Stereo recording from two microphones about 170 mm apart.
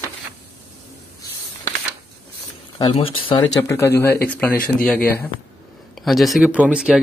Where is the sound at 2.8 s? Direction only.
35° left (ahead or behind).